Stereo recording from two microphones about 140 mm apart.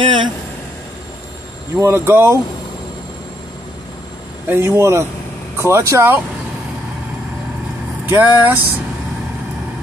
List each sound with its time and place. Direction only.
0.0 s vehicle: 35° right (ahead or behind)
1.8 s speech: 15° right (ahead or behind)
4.5 s speech: 20° right (ahead or behind)
8.1 s speech: 15° right (ahead or behind)